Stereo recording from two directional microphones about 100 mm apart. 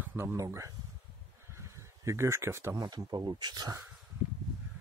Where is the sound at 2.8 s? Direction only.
45° right (ahead or behind).